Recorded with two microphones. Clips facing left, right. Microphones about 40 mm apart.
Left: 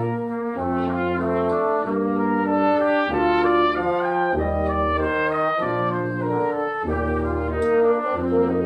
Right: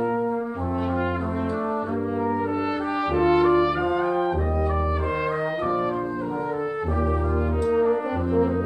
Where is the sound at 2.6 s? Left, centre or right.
Left.